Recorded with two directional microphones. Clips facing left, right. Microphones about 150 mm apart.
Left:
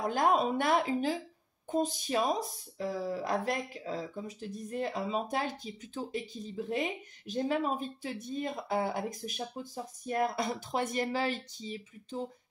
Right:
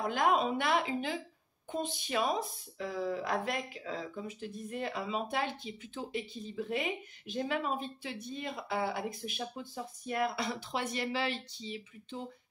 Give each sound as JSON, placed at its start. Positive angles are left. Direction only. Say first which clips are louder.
{"t": 0.1, "sound": "speech", "louder": "left 1 dB", "side_deg": 40}